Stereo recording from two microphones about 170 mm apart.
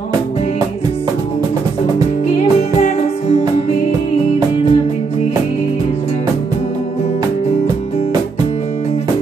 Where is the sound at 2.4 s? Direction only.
35° left (ahead or behind).